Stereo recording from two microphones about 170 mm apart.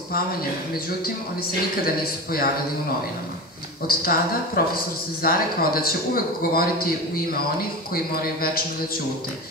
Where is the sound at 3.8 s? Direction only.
60° left (ahead or behind).